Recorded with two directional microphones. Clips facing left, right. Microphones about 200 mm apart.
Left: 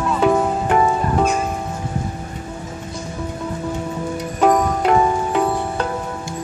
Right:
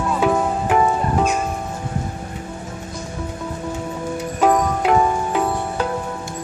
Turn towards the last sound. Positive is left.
turn(degrees=0)  # may be behind; listen again after turning